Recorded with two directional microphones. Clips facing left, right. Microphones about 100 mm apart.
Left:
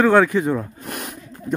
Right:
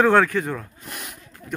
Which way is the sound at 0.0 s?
5° left (ahead or behind).